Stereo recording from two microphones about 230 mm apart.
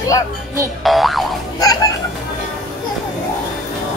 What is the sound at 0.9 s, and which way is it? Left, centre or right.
Music, centre.